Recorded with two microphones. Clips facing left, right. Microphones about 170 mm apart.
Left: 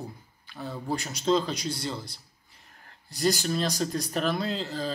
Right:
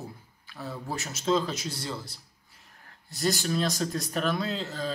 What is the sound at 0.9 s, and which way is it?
Speech, 5° right (ahead or behind).